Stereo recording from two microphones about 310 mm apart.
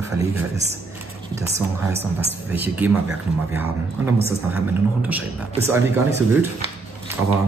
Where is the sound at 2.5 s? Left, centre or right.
Centre.